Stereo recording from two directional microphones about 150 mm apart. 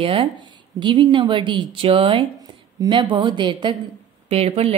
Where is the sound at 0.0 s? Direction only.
35° right (ahead or behind).